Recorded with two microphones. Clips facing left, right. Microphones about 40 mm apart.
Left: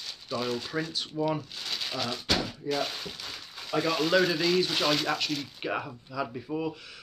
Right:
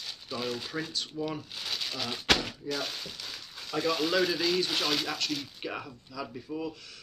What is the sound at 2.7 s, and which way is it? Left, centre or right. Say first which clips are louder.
Speech: left 4 dB; centre.